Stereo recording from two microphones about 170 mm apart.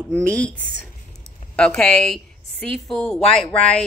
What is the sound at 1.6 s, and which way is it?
A woman's voice, 5° left (ahead or behind).